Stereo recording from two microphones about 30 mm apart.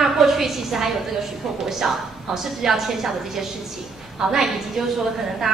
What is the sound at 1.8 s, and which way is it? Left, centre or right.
Speech, right.